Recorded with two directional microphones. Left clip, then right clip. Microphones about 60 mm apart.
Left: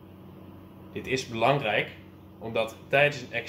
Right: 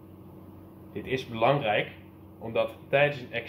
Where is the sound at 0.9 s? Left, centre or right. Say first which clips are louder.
Left 1 dB; centre.